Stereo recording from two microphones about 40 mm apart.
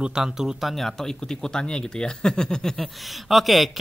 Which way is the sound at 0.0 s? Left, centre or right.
Centre.